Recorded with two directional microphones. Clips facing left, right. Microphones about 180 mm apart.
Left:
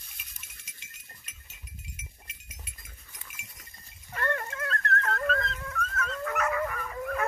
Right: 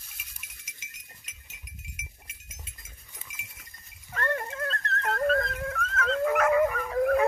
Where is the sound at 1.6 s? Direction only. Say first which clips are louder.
Even; 30° left (ahead or behind).